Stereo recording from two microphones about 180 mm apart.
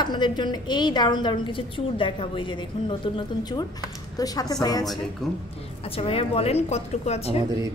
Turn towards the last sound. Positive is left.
turn(degrees=35)  # may be behind; listen again after turning